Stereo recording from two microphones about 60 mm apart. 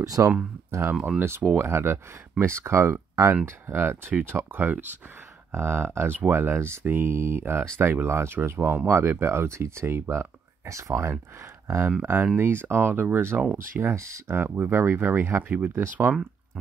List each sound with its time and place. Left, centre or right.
0.0 s speech: right
0.7 s speech: right
0.9 s speech: centre
1.2 s speech: right
5.5 s speech: right
10.7 s speech: right
15.7 s speech: right